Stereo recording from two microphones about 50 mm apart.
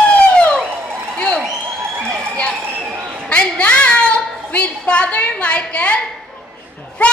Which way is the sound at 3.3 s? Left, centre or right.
Left.